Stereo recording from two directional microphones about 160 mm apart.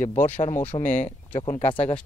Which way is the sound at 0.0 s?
50° left (ahead or behind).